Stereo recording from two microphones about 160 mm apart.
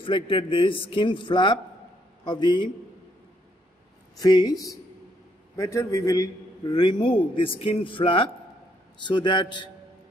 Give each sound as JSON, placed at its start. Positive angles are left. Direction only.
{"t": 0.0, "sound": "a man's voice", "side_deg": 30}
{"t": 4.2, "sound": "a man's voice", "side_deg": 25}